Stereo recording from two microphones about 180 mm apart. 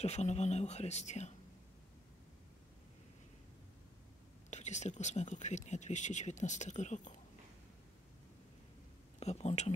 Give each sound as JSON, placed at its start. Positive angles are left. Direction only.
{"t": 0.0, "sound": "speech", "side_deg": 35}
{"t": 4.5, "sound": "speech", "side_deg": 40}
{"t": 9.2, "sound": "speech", "side_deg": 35}